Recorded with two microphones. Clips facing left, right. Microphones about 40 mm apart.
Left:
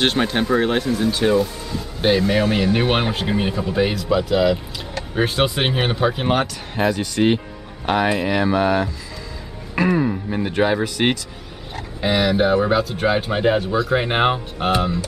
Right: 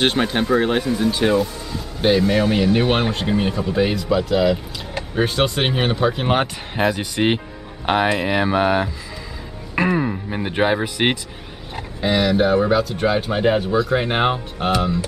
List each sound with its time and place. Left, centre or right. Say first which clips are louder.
0.0 s speech: even; centre
2.0 s speech: right 1 dB; centre
6.3 s speech: right 1 dB; right
6.8 s speech: even; centre
7.8 s speech: right 1 dB; centre
12.0 s speech: even; centre